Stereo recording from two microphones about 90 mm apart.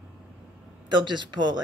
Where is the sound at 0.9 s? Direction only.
60° right (ahead or behind).